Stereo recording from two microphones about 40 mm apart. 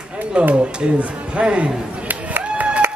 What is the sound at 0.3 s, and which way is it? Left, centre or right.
Speech, right.